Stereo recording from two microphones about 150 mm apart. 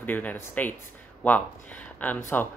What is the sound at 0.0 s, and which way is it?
Speech, 10° left (ahead or behind).